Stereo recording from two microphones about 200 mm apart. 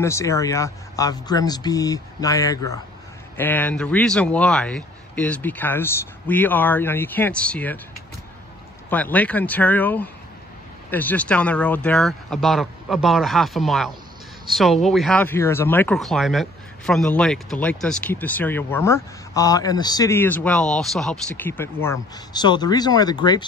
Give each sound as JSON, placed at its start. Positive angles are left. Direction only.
{"t": 0.0, "sound": "speech", "side_deg": 15}
{"t": 8.9, "sound": "speech", "side_deg": 10}